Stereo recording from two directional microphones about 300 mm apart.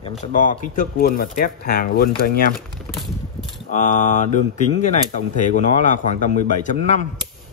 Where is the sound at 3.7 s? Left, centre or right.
Left.